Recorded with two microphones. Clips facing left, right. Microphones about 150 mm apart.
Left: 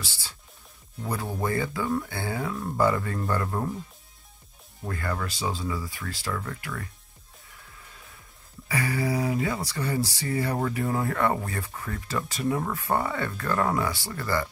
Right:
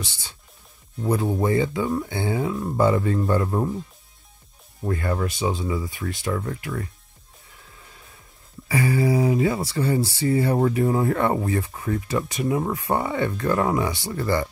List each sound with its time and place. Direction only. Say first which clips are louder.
0.0 s speech: right 4 dB; 20° right (ahead or behind)
4.8 s speech: right 6 dB; 25° right (ahead or behind)
8.6 s speech: right 6 dB; 25° right (ahead or behind)